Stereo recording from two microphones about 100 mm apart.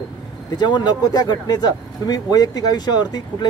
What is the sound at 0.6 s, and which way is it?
Speech, 45° left (ahead or behind).